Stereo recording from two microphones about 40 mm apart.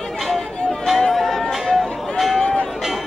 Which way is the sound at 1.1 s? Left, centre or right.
Centre.